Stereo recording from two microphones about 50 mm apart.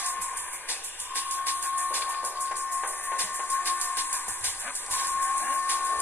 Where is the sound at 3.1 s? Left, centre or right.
Left.